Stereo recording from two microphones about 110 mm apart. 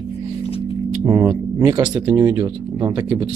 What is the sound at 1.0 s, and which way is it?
Speech, 30° right (ahead or behind).